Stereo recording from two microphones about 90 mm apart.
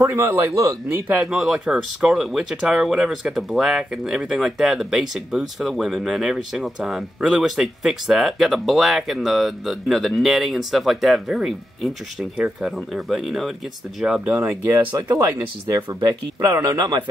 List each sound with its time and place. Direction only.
0.0 s a man's voice: 25° right (ahead or behind)
1.2 s speech: 5° right (ahead or behind)
14.3 s speech: 35° right (ahead or behind)